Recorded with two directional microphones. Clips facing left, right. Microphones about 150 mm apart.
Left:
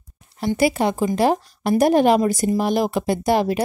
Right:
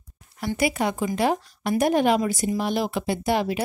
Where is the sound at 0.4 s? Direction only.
30° left (ahead or behind).